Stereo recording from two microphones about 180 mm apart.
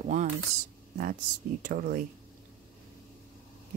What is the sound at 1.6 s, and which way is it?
Speech, 50° right (ahead or behind).